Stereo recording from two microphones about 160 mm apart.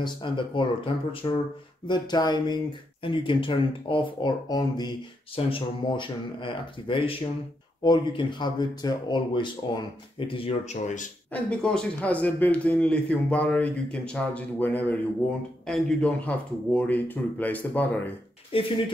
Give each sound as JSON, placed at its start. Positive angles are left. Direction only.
{"t": 0.0, "sound": "speech", "side_deg": 30}
{"t": 11.3, "sound": "a man's voice", "side_deg": 5}
{"t": 18.5, "sound": "speech", "side_deg": 35}